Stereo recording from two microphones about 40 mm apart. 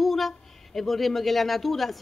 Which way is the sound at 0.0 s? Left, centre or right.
Centre.